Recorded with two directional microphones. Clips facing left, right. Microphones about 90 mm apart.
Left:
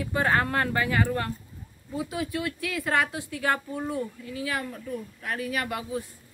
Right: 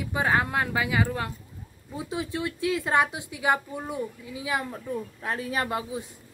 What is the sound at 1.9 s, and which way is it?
Speech, 25° right (ahead or behind).